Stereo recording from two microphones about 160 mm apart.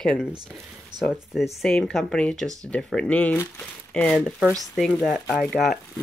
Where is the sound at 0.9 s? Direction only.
25° right (ahead or behind).